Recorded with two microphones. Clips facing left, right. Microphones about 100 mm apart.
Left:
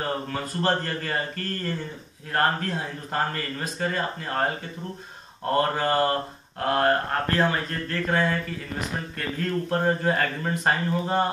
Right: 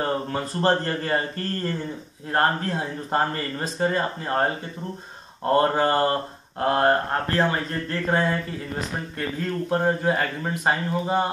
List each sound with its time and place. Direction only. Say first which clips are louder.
0.0 s speech: right 3 dB; 30° right (ahead or behind)
5.5 s speech: right 3 dB; 30° right (ahead or behind)
9.7 s speech: right 2 dB; 15° right (ahead or behind)